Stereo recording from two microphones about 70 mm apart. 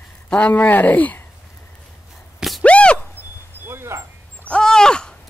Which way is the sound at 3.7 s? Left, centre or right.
Right.